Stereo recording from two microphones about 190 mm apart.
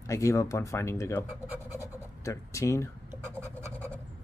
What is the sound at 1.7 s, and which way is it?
Scratch, 15° left (ahead or behind).